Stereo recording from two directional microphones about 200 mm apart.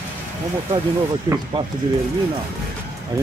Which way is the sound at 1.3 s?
25° right (ahead or behind).